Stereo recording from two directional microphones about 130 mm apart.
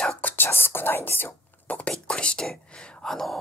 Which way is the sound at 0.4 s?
15° left (ahead or behind).